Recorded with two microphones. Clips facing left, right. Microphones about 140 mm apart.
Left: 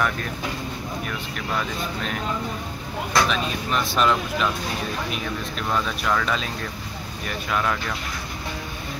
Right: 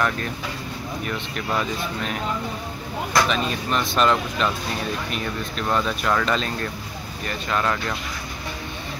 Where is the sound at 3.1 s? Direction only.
Centre (ahead or behind).